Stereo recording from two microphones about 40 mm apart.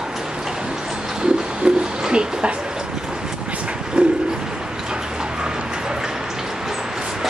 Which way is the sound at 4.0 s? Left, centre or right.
Right.